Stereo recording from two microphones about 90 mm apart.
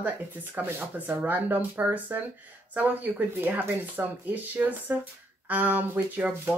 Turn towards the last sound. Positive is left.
turn(degrees=-15)  # may be behind; listen again after turning